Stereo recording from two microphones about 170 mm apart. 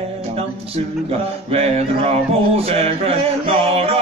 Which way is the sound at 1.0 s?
40° right (ahead or behind).